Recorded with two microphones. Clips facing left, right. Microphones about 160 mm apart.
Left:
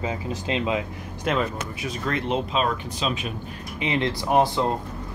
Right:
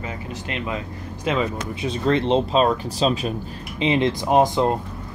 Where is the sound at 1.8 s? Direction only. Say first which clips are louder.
Right 8 dB; 25° right (ahead or behind).